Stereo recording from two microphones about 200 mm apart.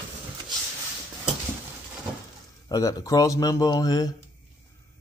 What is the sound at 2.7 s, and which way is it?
Speech, 15° left (ahead or behind).